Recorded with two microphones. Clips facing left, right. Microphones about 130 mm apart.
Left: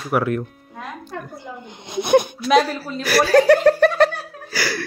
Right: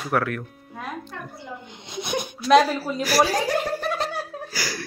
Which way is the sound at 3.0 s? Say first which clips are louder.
Left 7 dB; 65° left (ahead or behind).